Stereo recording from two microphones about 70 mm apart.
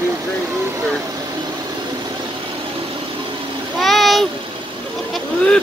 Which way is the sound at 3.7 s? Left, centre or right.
Centre.